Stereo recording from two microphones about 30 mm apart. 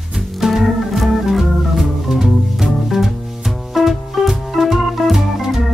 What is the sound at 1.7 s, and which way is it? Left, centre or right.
Music, centre.